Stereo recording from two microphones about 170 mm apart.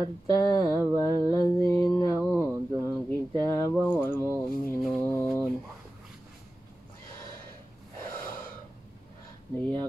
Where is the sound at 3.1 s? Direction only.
20° left (ahead or behind).